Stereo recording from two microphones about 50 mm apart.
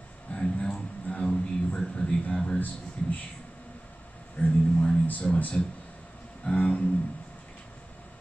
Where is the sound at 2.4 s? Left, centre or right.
Left.